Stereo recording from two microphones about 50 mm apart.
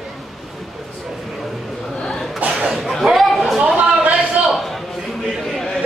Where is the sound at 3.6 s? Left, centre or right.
Centre.